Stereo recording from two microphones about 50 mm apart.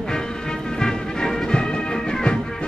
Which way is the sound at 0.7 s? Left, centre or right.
Centre.